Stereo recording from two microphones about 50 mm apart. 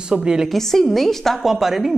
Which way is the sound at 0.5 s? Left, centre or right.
Centre.